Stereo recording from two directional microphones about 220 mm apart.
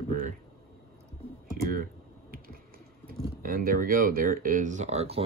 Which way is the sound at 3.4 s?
40° right (ahead or behind).